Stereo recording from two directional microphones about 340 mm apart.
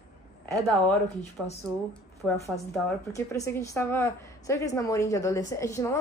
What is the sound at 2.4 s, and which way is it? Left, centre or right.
A woman's voice, centre.